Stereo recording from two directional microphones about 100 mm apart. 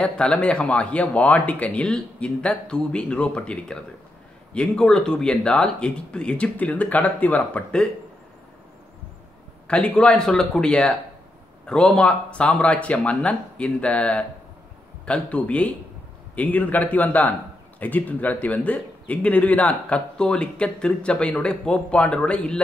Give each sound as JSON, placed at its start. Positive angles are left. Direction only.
{"t": 0.0, "sound": "a man's voice", "side_deg": 10}
{"t": 9.7, "sound": "a man's voice", "side_deg": 10}